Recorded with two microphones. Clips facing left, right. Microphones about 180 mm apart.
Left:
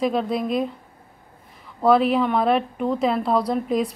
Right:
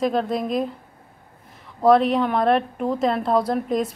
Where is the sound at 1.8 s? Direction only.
Centre (ahead or behind).